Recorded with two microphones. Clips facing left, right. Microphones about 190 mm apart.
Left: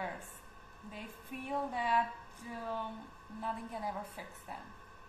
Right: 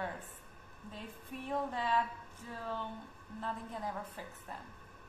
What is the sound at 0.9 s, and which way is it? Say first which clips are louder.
A woman's voice: even; 10° left (ahead or behind).